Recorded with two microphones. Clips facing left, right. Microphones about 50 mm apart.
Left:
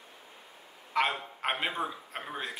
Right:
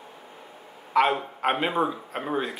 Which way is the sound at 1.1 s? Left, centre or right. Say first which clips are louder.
Right 8 dB; centre.